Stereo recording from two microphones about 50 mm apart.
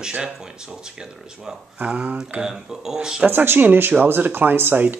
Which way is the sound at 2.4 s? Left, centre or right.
Centre.